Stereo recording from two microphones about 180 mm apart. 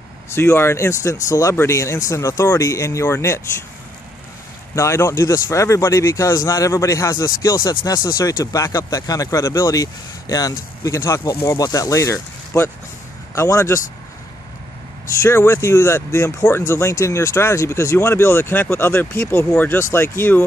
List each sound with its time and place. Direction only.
0.3 s speech: 15° left (ahead or behind)
4.7 s speech: 15° left (ahead or behind)
15.2 s speech: 15° left (ahead or behind)